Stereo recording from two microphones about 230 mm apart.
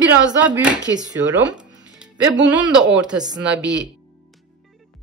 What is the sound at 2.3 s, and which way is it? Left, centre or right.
Speech, right.